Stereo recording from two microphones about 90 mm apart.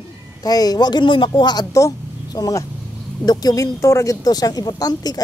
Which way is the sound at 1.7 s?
35° left (ahead or behind).